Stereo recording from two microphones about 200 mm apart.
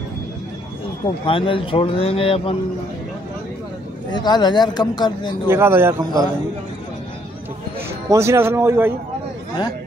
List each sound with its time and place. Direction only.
1.0 s speech: 25° left (ahead or behind)
4.1 s speech: 20° left (ahead or behind)
5.5 s a man's voice: 10° right (ahead or behind)
8.1 s a man's voice: 15° right (ahead or behind)